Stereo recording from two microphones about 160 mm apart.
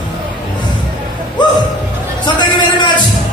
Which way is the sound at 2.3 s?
30° left (ahead or behind).